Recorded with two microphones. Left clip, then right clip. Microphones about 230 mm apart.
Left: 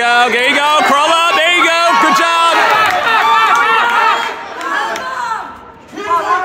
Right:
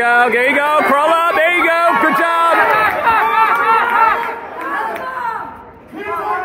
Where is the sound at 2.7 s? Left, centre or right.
Left.